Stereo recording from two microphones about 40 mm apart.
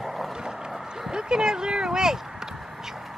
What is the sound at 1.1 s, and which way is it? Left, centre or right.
Speech, centre.